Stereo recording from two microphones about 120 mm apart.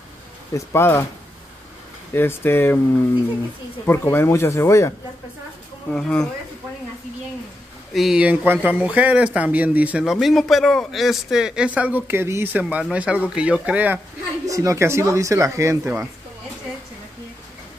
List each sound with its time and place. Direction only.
0.6 s speech: 20° left (ahead or behind)
2.1 s speech: 20° left (ahead or behind)
3.8 s speech: 20° left (ahead or behind)
5.9 s speech: 5° left (ahead or behind)
7.9 s speech: centre (ahead or behind)
10.1 s speech: centre (ahead or behind)
14.5 s speech: 25° right (ahead or behind)